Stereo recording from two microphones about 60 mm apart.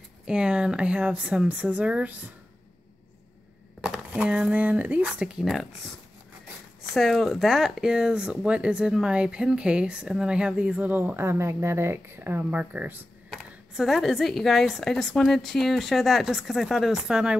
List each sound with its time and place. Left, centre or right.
0.2 s speech: centre
3.8 s speech: centre
5.5 s a woman's voice: centre; by 13.0 s right
13.7 s a woman's voice: centre